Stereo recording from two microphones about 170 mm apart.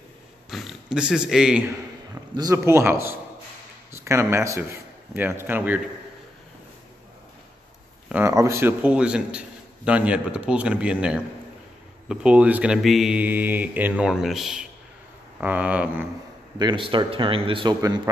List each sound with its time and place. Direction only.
0.5 s speech: centre (ahead or behind)
2.3 s a man's voice: 20° right (ahead or behind)
8.1 s a man's voice: 15° right (ahead or behind)
16.5 s a man's voice: 30° right (ahead or behind)